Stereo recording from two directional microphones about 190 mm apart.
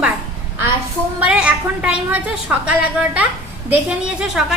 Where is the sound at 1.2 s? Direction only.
5° right (ahead or behind).